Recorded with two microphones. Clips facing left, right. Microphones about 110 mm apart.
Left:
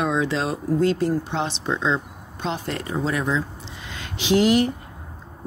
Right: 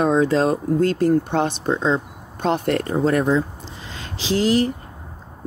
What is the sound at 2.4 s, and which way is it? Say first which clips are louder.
Speech: right 8 dB; 60° right (ahead or behind).